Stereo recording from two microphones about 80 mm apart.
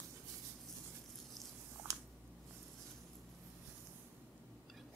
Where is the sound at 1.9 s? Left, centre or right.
Right.